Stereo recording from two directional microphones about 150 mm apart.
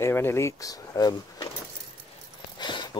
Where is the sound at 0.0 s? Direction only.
15° left (ahead or behind).